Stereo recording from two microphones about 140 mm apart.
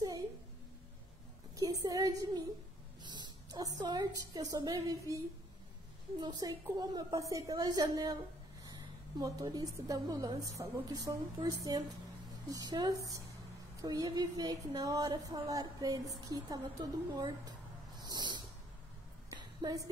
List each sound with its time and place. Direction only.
1.6 s a woman's voice: 25° right (ahead or behind)
6.2 s speech: 30° right (ahead or behind)
9.2 s speech: 25° right (ahead or behind)
19.3 s a sound: 25° right (ahead or behind)